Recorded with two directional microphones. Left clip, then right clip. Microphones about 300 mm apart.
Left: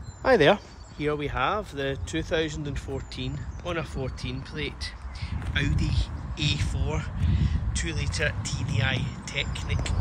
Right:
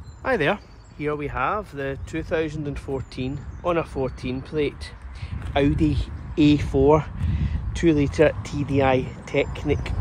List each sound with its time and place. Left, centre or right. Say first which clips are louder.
0.2 s speech: left 3 dB; centre